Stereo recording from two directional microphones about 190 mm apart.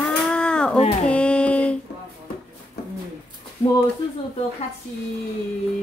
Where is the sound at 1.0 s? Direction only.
5° left (ahead or behind).